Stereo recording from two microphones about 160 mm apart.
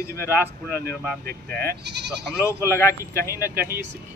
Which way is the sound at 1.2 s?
70° right (ahead or behind).